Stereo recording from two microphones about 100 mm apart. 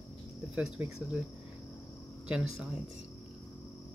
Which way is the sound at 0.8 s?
25° right (ahead or behind).